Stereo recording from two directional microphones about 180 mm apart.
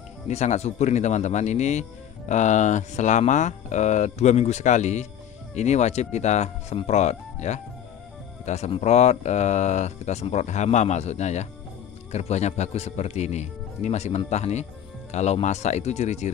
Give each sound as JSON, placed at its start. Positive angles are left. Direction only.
{"t": 0.3, "sound": "speech", "side_deg": 40}